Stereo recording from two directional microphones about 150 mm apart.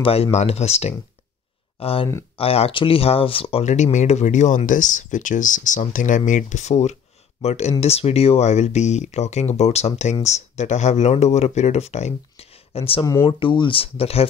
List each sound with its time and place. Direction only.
0.0 s speech: 40° left (ahead or behind)
3.6 s speech: 50° left (ahead or behind)
13.0 s speech: 25° left (ahead or behind)
13.4 s speech: 35° left (ahead or behind)